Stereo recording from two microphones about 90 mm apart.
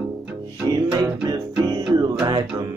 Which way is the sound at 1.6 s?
45° right (ahead or behind).